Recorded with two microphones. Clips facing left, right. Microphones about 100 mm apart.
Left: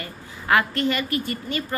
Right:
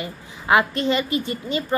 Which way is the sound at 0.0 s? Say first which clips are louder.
Right 3 dB; 20° right (ahead or behind).